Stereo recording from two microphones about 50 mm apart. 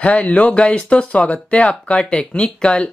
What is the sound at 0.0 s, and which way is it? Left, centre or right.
Speech, left.